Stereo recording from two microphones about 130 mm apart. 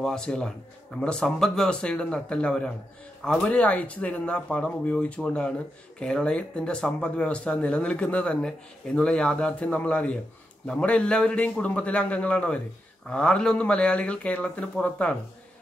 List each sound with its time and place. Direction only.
0.0 s speech: 5° left (ahead or behind)